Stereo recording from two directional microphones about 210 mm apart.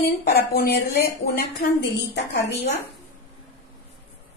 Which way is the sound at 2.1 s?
50° left (ahead or behind).